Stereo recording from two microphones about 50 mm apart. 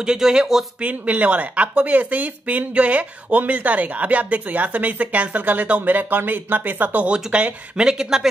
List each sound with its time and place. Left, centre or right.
0.0 s speech: centre
0.8 s speech: right
7.1 s speech: right